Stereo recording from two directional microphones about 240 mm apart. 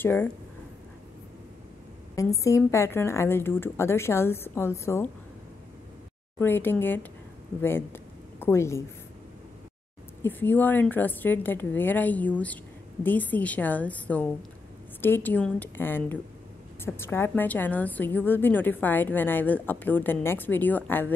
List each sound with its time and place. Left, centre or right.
0.0 s a woman's voice: centre
2.1 s a woman's voice: centre
6.4 s a woman's voice: centre
10.2 s a woman's voice: centre